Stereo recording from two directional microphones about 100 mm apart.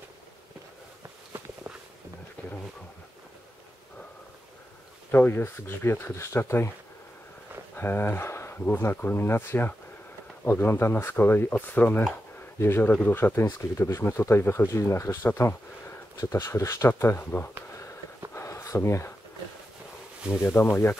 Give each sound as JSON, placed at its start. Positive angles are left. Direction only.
{"t": 5.1, "sound": "speech", "side_deg": 20}
{"t": 7.7, "sound": "speech", "side_deg": 20}
{"t": 12.1, "sound": "a sound", "side_deg": 25}
{"t": 13.0, "sound": "speech", "side_deg": 20}
{"t": 18.3, "sound": "a sound", "side_deg": 30}
{"t": 20.4, "sound": "speech", "side_deg": 25}